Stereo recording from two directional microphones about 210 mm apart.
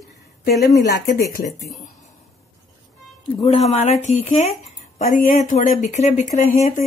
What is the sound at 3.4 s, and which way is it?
Speech, 30° left (ahead or behind).